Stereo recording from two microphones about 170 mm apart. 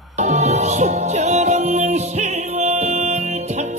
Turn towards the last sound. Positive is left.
turn(degrees=-40)  # may be behind; listen again after turning